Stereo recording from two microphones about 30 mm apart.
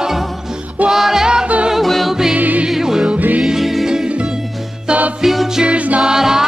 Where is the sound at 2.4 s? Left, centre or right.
Right.